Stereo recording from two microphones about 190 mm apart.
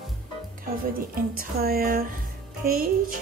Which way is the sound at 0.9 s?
50° right (ahead or behind).